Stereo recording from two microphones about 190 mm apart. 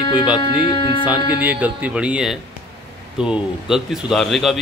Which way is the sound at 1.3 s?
10° right (ahead or behind).